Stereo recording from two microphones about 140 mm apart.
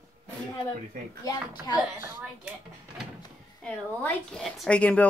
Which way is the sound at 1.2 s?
25° left (ahead or behind).